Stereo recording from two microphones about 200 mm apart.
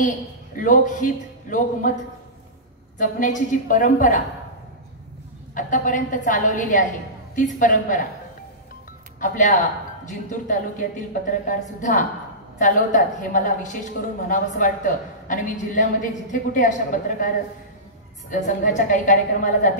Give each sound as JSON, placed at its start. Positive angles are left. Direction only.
{"t": 0.6, "sound": "a woman's voice", "side_deg": 40}
{"t": 3.0, "sound": "a woman's voice", "side_deg": 40}
{"t": 5.5, "sound": "a woman's voice", "side_deg": 40}
{"t": 9.2, "sound": "a woman's voice", "side_deg": 40}
{"t": 18.3, "sound": "a woman's voice", "side_deg": 40}